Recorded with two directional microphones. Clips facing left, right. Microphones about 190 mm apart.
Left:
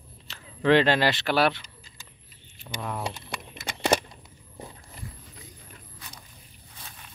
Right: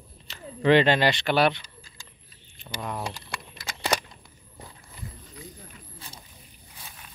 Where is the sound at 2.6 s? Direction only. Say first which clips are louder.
Even; centre (ahead or behind).